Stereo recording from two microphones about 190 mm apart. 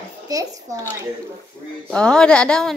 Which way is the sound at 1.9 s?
5° left (ahead or behind).